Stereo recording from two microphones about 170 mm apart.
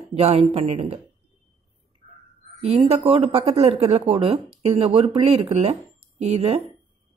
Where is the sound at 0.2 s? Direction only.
35° right (ahead or behind).